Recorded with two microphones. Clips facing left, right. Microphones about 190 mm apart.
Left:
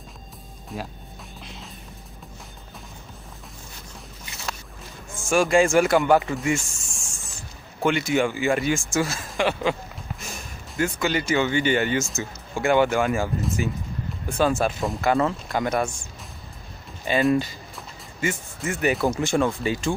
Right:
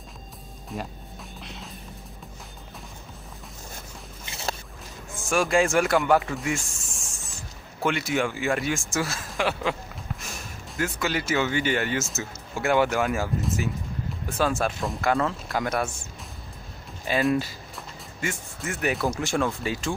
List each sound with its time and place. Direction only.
0.7 s speech: centre (ahead or behind)
1.4 s music: centre (ahead or behind)
5.1 s speech: centre (ahead or behind)